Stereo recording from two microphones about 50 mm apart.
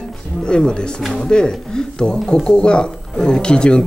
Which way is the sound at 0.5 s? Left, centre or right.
Centre.